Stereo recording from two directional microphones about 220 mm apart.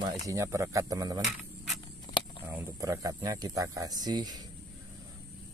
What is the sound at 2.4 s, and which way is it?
Speech, 10° right (ahead or behind).